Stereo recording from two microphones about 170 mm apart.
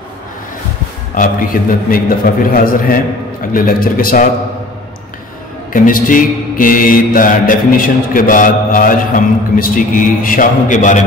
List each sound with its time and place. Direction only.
1.1 s a man's voice: 50° left (ahead or behind)
5.7 s mantra: 55° left (ahead or behind)